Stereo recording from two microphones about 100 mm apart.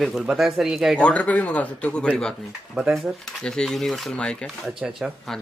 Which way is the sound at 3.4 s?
5° left (ahead or behind).